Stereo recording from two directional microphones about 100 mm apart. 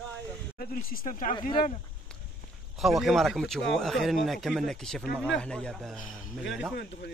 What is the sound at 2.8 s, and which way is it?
Speech, centre (ahead or behind).